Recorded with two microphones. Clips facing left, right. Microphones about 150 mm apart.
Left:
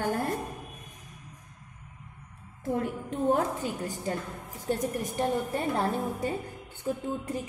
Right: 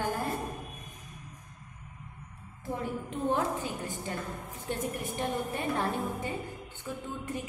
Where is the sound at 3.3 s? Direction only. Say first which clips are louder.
Left 2 dB; 40° left (ahead or behind).